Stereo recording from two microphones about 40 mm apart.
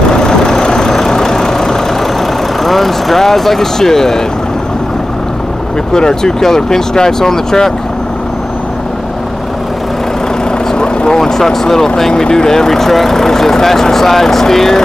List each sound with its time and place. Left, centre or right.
0.1 s vehicle: centre
2.6 s speech: centre
5.9 s speech: centre
10.7 s vehicle: left
11.1 s speech: centre